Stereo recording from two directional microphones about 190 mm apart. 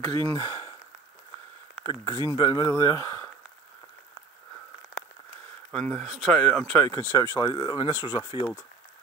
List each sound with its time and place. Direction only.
0.3 s speech: 25° left (ahead or behind)
1.9 s speech: 20° left (ahead or behind)
5.7 s speech: 5° left (ahead or behind); by 8.5 s 25° left (ahead or behind)